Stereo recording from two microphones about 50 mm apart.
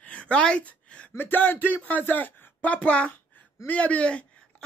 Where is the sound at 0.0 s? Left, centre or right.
Left.